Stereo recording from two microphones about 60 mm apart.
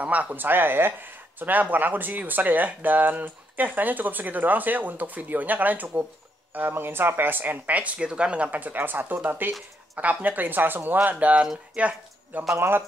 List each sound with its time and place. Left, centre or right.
0.0 s speech: right
12.5 s speech: right